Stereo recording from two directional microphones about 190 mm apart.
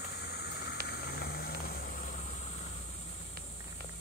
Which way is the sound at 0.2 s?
60° left (ahead or behind).